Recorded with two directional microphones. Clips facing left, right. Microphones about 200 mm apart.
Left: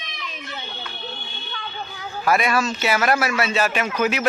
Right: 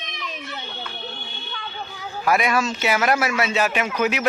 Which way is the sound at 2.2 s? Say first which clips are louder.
Even; 15° right (ahead or behind).